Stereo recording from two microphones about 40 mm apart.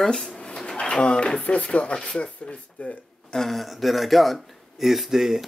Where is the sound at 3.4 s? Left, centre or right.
Centre.